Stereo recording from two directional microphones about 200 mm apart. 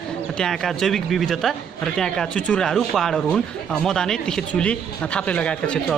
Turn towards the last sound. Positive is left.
turn(degrees=5)  # may be behind; listen again after turning